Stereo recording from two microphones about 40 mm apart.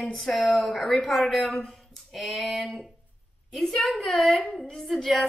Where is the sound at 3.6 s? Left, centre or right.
Centre.